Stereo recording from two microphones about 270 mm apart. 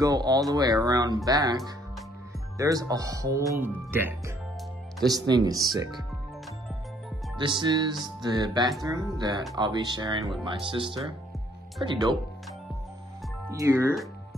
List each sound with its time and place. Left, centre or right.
0.0 s music: centre
5.3 s music: centre
7.3 s music: centre
13.5 s music: centre